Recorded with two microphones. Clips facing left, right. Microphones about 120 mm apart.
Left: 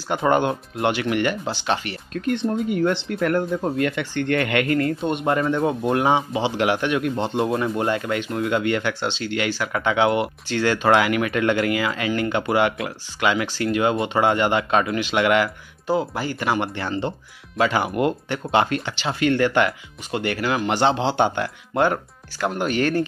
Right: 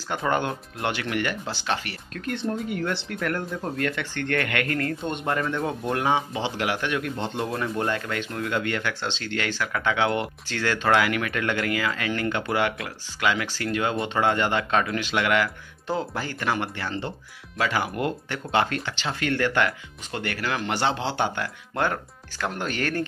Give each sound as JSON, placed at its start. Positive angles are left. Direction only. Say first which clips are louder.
{"t": 0.1, "sound": "speech", "louder": "left 6 dB", "side_deg": 20}